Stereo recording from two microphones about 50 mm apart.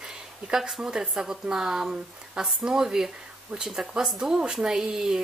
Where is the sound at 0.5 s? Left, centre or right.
Centre.